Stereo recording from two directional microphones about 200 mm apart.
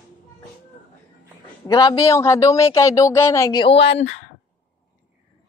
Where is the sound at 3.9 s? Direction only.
35° left (ahead or behind).